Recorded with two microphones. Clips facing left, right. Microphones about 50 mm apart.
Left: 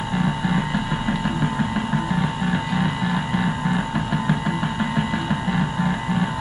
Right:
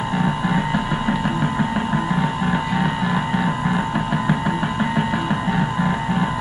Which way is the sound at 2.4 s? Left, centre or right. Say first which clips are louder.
Right 2 dB; centre.